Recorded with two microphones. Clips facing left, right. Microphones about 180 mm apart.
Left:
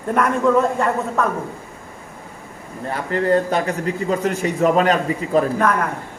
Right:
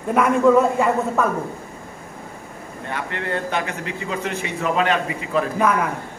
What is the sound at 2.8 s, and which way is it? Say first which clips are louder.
A man's voice: left 8 dB; 35° left (ahead or behind).